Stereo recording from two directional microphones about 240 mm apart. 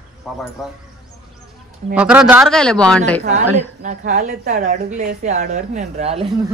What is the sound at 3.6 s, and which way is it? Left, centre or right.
A woman's voice, right.